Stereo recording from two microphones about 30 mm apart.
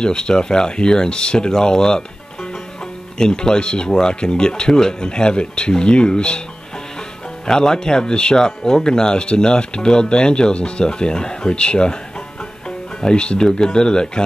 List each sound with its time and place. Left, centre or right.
0.0 s speech: left
3.2 s speech: left
7.4 s speech: centre
13.0 s speech: left